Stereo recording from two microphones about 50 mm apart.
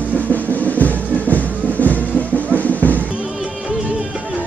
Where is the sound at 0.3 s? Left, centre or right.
Left.